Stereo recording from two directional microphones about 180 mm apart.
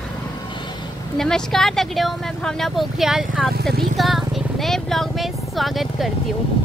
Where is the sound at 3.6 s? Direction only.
60° right (ahead or behind).